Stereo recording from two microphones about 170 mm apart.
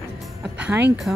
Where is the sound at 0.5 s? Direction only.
10° right (ahead or behind).